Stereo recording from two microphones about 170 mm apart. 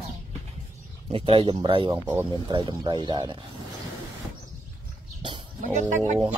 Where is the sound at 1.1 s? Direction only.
35° right (ahead or behind).